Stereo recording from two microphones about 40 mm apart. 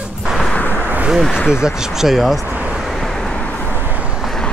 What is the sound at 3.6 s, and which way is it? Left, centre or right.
Vehicle, right.